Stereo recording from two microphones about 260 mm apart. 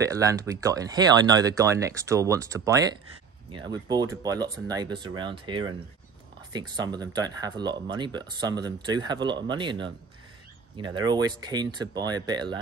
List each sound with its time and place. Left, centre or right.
0.0 s speech: centre